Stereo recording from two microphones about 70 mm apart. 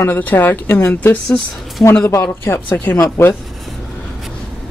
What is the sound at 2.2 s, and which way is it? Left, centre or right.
A woman's voice, left.